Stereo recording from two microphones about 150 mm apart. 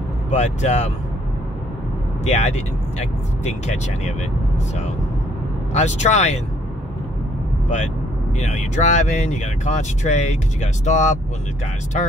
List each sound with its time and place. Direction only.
0.3 s speech: 50° left (ahead or behind)
2.2 s speech: 50° left (ahead or behind)
5.7 s speech: 50° left (ahead or behind)
7.6 s speech: 50° left (ahead or behind)